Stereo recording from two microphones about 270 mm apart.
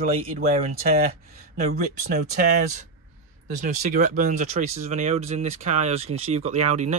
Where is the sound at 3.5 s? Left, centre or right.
Right.